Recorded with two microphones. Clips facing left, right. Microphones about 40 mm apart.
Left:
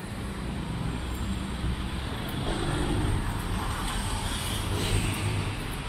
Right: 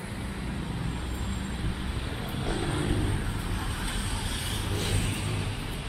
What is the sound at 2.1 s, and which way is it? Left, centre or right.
Vehicle, centre.